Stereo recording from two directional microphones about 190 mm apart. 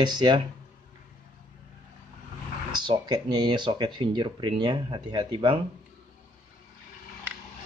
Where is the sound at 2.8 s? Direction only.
25° right (ahead or behind).